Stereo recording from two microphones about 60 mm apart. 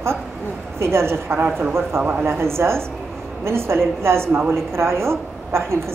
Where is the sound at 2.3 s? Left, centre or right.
Right.